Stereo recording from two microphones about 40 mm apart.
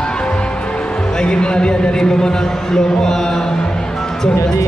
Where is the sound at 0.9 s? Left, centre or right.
Left.